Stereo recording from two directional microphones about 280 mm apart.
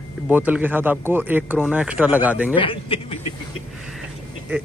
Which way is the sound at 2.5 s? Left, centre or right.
Centre.